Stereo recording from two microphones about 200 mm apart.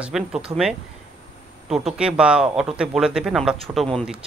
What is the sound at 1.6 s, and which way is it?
Speech, centre (ahead or behind).